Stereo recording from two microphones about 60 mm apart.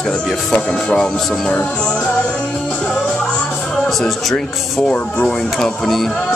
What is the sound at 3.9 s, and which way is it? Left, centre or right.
Speech, centre.